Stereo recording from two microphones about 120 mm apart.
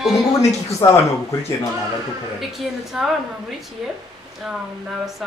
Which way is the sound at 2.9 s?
5° right (ahead or behind).